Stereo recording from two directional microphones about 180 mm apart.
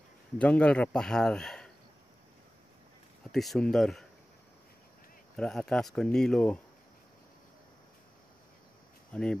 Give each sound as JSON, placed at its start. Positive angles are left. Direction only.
{"t": 0.4, "sound": "a man's voice", "side_deg": 5}
{"t": 3.3, "sound": "a man's voice", "side_deg": 0}
{"t": 5.3, "sound": "a man's voice", "side_deg": 5}
{"t": 9.1, "sound": "speech", "side_deg": 5}